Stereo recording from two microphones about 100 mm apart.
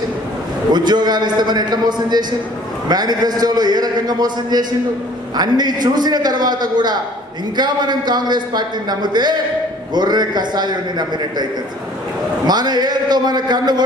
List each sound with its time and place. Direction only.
0.7 s a man's voice: 45° right (ahead or behind)
12.4 s a man's voice: 45° right (ahead or behind)